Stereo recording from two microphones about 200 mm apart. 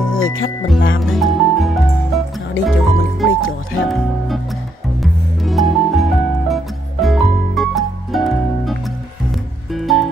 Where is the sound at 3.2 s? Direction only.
90° left.